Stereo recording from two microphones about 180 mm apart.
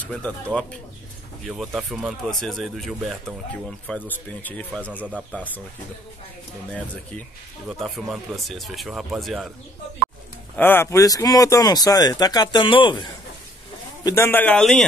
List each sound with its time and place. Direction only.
0.0 s speech: 5° left (ahead or behind)
1.4 s speech: centre (ahead or behind)
7.8 s speech: centre (ahead or behind)
10.5 s speech: 10° left (ahead or behind); by 13.1 s 25° left (ahead or behind)
14.0 s speech: 15° left (ahead or behind)